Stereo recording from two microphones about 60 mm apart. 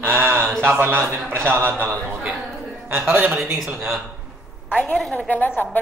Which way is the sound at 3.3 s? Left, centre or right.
Centre.